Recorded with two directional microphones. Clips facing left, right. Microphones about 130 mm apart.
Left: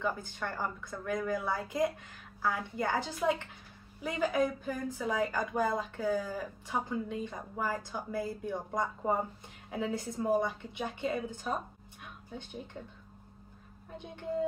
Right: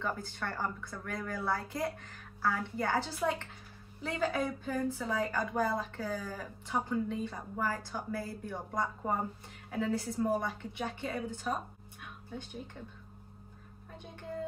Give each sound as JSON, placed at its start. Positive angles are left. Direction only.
{"t": 0.0, "sound": "a woman's voice", "side_deg": 15}